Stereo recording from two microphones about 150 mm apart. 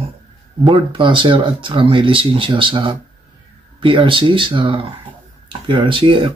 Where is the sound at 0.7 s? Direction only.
35° right (ahead or behind).